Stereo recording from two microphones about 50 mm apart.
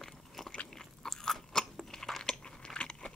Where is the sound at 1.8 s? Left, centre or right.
Centre.